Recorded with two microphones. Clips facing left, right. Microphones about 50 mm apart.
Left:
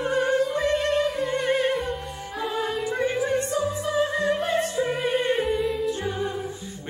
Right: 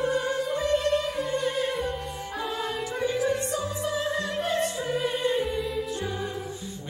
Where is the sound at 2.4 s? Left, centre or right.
Centre.